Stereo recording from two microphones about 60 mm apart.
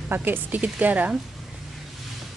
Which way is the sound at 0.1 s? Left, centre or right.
Right.